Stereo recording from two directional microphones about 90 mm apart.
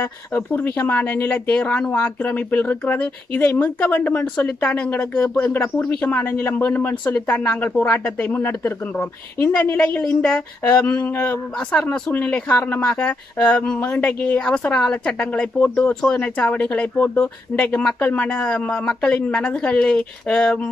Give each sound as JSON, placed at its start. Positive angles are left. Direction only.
{"t": 0.0, "sound": "a woman's voice", "side_deg": 25}